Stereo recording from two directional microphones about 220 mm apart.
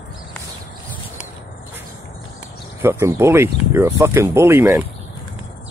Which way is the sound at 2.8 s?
10° right (ahead or behind).